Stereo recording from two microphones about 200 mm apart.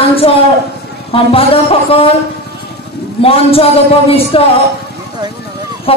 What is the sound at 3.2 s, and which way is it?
Speech, 30° left (ahead or behind).